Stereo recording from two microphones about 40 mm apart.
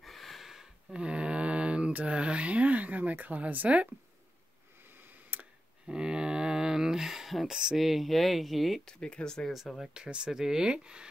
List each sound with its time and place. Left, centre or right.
0.0 s a sound: centre
0.9 s speech: right
4.9 s a sound: right
5.9 s a sound: centre
7.4 s speech: centre
7.7 s speech: centre
8.8 s speech: centre
9.9 s speech: right
10.7 s speech: right